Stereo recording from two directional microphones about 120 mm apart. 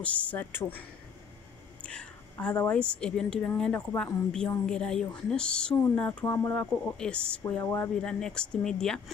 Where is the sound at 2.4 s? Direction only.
10° left (ahead or behind).